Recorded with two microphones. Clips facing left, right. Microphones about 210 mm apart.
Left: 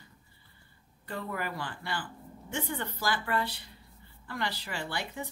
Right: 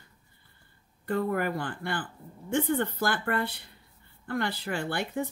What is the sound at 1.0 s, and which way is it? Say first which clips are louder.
Speech: right 8 dB; 50° right (ahead or behind).